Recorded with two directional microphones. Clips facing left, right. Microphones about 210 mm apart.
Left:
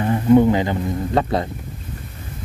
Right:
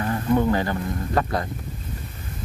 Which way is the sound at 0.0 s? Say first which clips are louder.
Left 7 dB; 20° left (ahead or behind).